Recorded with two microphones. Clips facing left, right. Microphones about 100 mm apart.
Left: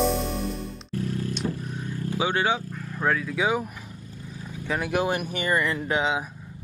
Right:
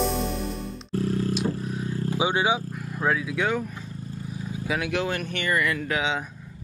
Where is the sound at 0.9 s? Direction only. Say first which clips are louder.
Right 4 dB; 35° right (ahead or behind).